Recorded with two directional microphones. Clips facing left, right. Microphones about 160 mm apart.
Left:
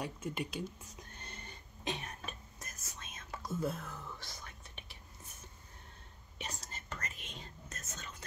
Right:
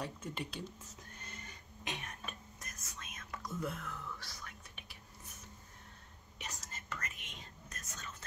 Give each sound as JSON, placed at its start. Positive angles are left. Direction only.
{"t": 0.0, "sound": "speech", "side_deg": 10}
{"t": 1.2, "sound": "whispering", "side_deg": 30}
{"t": 6.3, "sound": "whispering", "side_deg": 30}